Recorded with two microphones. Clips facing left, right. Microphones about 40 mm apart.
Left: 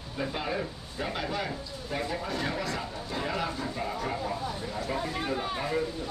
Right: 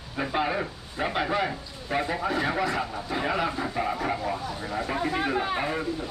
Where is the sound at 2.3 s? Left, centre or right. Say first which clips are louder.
Right 6 dB; right.